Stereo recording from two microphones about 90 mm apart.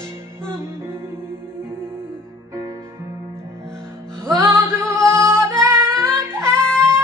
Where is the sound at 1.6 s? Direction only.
25° right (ahead or behind).